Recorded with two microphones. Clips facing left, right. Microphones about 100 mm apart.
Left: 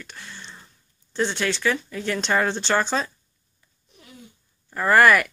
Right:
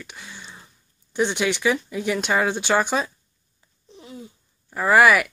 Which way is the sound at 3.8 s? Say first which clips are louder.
Right 8 dB; 25° right (ahead or behind).